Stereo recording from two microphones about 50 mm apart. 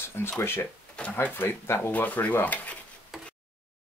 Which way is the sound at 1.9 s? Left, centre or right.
Left.